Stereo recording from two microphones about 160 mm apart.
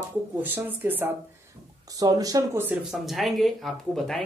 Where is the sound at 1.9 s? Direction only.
20° right (ahead or behind).